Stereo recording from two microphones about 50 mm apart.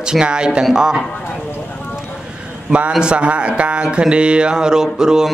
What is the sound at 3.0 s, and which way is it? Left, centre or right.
Speech, right.